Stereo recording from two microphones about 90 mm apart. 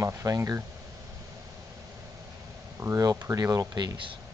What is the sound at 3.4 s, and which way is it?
Speech, 45° right (ahead or behind).